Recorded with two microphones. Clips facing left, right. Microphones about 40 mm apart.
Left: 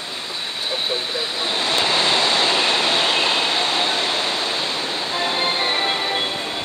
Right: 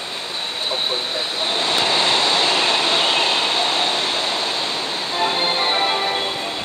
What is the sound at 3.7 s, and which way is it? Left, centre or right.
Vehicle, left.